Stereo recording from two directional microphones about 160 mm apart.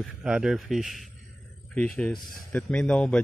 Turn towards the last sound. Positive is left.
turn(degrees=5)  # may be behind; listen again after turning